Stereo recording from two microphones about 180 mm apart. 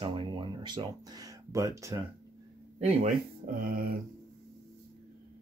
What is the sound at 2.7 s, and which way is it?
Speech, 35° right (ahead or behind).